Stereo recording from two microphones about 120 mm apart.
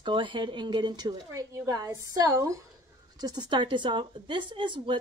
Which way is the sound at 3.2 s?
35° right (ahead or behind).